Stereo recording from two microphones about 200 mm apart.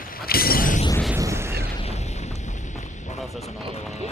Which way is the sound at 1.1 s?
15° right (ahead or behind).